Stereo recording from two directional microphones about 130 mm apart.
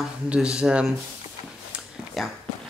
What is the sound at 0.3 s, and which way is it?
Speech, 5° right (ahead or behind).